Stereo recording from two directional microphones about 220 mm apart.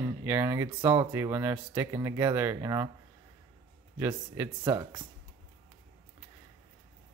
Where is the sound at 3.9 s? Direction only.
10° right (ahead or behind).